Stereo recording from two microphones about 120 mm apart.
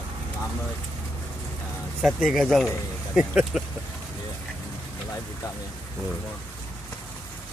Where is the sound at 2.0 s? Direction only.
Centre (ahead or behind).